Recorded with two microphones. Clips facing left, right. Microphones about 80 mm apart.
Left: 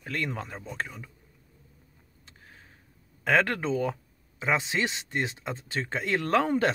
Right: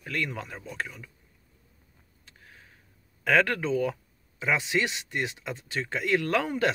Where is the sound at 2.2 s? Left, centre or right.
Left.